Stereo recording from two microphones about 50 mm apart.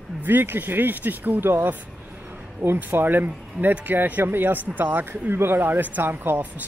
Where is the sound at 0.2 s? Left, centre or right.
Right.